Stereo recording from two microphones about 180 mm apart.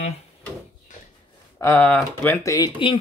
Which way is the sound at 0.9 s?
45° left (ahead or behind).